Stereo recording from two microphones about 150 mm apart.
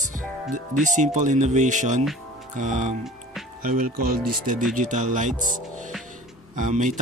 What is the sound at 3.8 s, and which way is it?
Speech, 80° right.